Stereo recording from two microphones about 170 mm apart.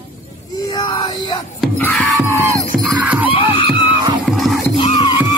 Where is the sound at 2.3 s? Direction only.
15° right (ahead or behind).